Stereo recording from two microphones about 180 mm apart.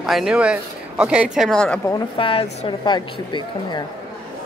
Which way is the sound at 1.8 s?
25° left (ahead or behind).